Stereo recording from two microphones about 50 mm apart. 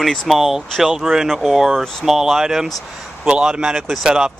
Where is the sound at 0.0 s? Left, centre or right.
Centre.